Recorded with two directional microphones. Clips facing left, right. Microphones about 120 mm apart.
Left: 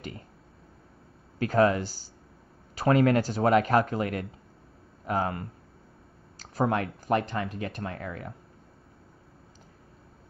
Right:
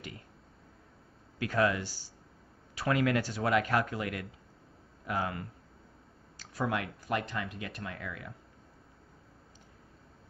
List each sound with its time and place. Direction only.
1.4 s speech: 40° left (ahead or behind)
6.5 s speech: 40° left (ahead or behind)